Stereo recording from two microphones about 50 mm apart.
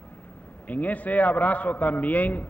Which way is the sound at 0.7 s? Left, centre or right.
Left.